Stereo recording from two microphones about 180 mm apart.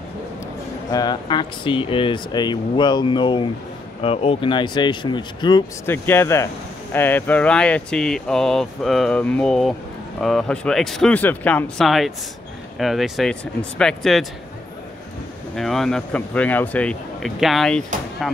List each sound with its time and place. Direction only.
0.8 s speech: 25° left (ahead or behind)
5.9 s speech: 10° left (ahead or behind)
15.5 s speech: centre (ahead or behind)